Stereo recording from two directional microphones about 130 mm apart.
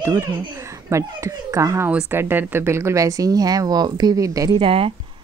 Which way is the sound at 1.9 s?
15° right (ahead or behind).